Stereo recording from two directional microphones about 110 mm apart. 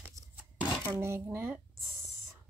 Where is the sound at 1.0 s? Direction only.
25° right (ahead or behind).